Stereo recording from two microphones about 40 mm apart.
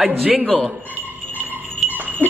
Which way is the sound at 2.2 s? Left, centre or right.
Left.